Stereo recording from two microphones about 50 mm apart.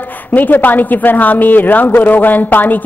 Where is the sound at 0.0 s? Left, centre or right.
Left.